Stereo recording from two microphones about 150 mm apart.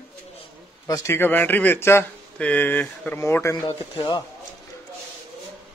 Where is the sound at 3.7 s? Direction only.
30° left (ahead or behind).